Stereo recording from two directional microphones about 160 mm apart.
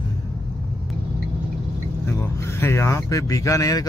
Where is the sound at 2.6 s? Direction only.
15° left (ahead or behind).